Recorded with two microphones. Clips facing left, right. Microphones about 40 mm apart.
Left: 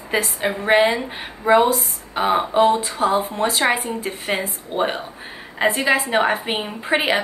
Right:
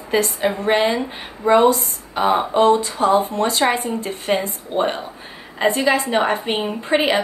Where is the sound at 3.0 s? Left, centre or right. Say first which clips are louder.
Right 3 dB; left.